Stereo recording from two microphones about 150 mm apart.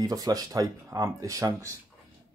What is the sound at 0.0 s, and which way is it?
Speech, 25° right (ahead or behind).